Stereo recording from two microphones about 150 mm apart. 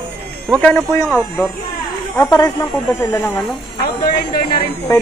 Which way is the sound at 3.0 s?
15° left (ahead or behind).